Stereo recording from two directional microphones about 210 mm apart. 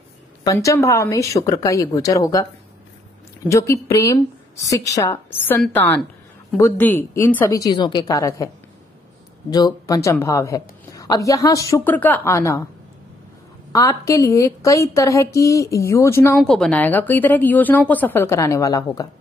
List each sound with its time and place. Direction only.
0.4 s speech: 15° left (ahead or behind)
3.4 s speech: 15° left (ahead or behind)
9.5 s speech: 20° left (ahead or behind)
13.7 s speech: 15° left (ahead or behind)